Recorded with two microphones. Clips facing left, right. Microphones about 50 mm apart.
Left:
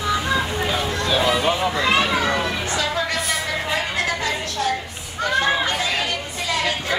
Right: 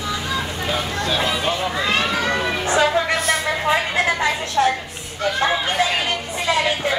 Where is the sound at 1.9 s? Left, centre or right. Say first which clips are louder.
Left 1 dB; centre.